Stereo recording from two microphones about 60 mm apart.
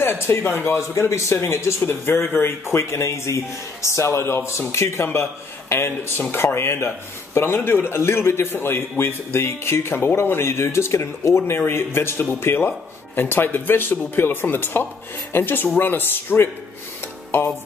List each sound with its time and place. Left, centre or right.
0.0 s a man's voice: left